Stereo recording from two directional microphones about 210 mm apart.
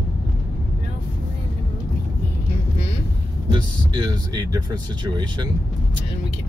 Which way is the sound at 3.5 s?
20° right (ahead or behind).